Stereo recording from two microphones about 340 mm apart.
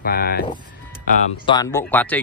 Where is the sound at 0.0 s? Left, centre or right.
Left.